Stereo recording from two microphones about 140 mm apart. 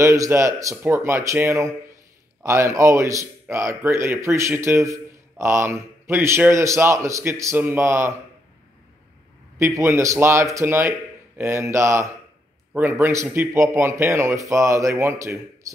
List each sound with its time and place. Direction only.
0.0 s a man's voice: 20° right (ahead or behind)
9.6 s a man's voice: 20° right (ahead or behind)